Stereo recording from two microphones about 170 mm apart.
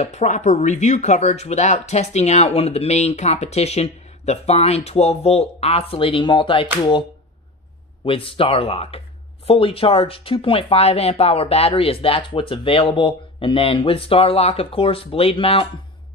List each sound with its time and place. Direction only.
0.0 s speech: 40° left (ahead or behind)